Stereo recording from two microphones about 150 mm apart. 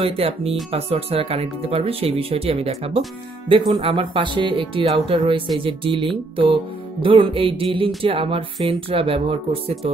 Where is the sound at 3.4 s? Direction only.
30° right (ahead or behind).